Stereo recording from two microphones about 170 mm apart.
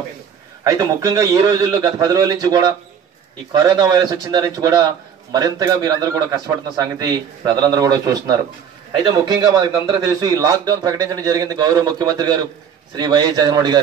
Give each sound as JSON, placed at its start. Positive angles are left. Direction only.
{"t": 0.7, "sound": "a man's voice", "side_deg": -20}